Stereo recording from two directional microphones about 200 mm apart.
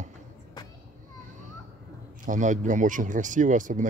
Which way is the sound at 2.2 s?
40° right (ahead or behind).